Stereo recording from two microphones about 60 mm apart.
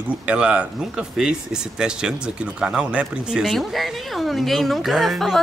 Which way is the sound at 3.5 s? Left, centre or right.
Centre.